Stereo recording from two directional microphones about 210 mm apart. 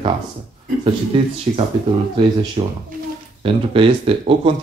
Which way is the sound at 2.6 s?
30° right (ahead or behind).